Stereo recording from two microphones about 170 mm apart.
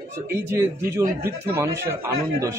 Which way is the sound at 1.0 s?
60° right (ahead or behind).